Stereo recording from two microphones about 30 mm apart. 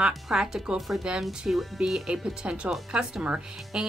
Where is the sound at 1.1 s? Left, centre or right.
Right.